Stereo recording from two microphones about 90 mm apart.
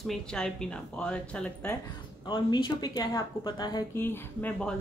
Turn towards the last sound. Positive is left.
turn(degrees=25)  # may be behind; listen again after turning